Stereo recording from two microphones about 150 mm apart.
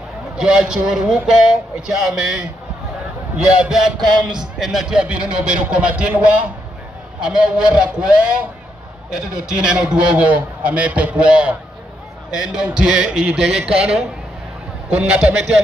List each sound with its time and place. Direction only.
0.4 s a man's voice: 5° right (ahead or behind)
14.9 s a man's voice: 10° right (ahead or behind)